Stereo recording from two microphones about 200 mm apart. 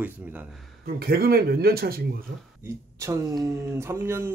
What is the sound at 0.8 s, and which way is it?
Speech, 50° right (ahead or behind).